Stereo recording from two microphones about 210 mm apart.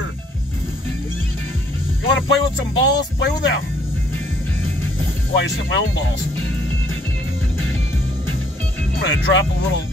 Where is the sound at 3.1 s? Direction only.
60° left (ahead or behind).